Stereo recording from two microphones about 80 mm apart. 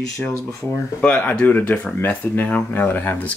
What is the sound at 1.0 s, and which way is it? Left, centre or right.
Speech, centre.